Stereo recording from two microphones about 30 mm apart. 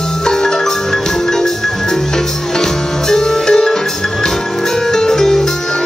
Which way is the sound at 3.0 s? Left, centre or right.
Centre.